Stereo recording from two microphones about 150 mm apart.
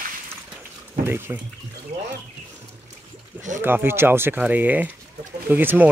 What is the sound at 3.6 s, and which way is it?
Speech, 15° right (ahead or behind).